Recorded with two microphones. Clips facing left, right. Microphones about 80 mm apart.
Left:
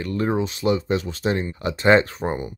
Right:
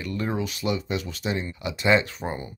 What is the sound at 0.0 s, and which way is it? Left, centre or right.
Speech, left.